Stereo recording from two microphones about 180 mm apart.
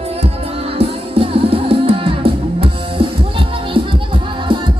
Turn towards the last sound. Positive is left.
turn(degrees=-30)  # may be behind; listen again after turning